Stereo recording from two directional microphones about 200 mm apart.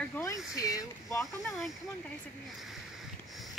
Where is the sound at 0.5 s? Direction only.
15° left (ahead or behind).